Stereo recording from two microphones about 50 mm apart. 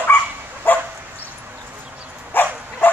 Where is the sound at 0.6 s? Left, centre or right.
Left.